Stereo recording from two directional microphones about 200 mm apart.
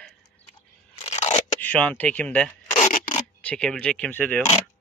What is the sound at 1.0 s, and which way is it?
Crunch, 35° left (ahead or behind).